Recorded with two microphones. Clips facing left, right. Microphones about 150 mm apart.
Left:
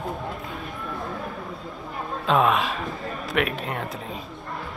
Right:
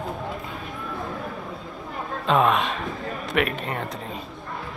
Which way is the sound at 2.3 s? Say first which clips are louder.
Even; centre (ahead or behind).